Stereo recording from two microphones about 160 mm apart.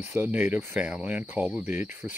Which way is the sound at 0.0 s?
15° right (ahead or behind).